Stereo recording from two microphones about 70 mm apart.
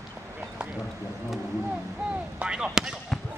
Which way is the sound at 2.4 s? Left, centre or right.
Centre.